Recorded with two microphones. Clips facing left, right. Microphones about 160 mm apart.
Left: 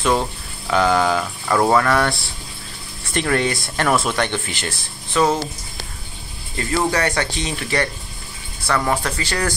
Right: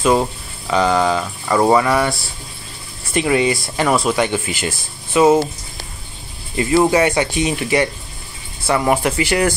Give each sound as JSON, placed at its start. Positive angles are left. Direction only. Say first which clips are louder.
{"t": 0.0, "sound": "speech", "louder": "right 4 dB", "side_deg": -5}
{"t": 6.5, "sound": "speech", "louder": "right 6 dB", "side_deg": -15}